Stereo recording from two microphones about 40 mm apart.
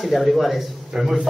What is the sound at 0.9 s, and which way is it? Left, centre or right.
Speech, centre.